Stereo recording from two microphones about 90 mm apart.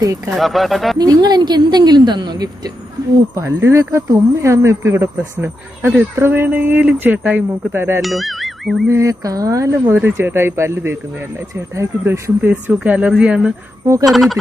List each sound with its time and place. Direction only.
0.0 s speech: 35° right (ahead or behind)
0.4 s speech: centre (ahead or behind)
0.9 s a woman's voice: 50° right (ahead or behind)
3.3 s speech: 30° right (ahead or behind)
8.0 s speech: centre (ahead or behind)
8.9 s speech: 40° right (ahead or behind)
12.4 s speech: 20° right (ahead or behind)
14.0 s speech: centre (ahead or behind)